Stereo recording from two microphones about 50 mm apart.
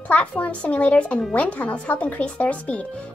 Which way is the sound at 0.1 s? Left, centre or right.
Left.